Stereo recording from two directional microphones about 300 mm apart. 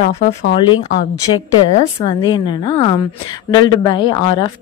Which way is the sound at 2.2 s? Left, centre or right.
Centre.